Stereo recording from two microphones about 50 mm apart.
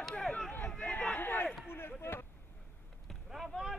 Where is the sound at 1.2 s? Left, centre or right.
Left.